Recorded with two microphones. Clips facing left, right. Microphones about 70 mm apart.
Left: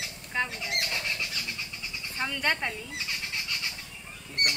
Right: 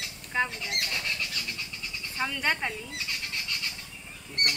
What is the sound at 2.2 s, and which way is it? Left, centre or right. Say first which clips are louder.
Speech: even; centre.